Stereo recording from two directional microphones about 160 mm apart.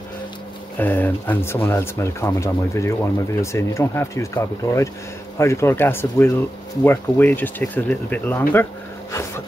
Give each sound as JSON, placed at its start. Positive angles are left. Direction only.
{"t": 0.7, "sound": "speech", "side_deg": 10}